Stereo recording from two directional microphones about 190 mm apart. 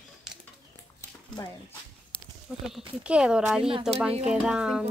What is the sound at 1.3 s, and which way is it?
Speech, 20° left (ahead or behind).